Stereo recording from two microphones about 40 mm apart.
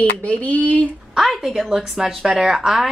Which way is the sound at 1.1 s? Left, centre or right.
Centre.